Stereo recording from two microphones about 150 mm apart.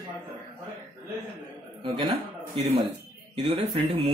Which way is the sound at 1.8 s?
35° right (ahead or behind).